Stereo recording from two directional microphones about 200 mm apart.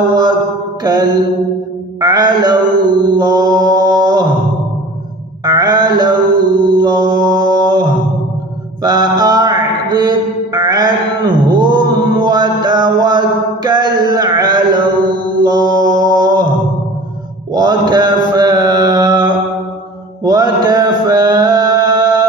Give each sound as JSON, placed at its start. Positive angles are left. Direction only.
{"t": 0.1, "sound": "mantra", "side_deg": -20}
{"t": 5.4, "sound": "mantra", "side_deg": -20}
{"t": 13.7, "sound": "a sound", "side_deg": -20}
{"t": 15.8, "sound": "mantra", "side_deg": -20}
{"t": 17.6, "sound": "mantra", "side_deg": -20}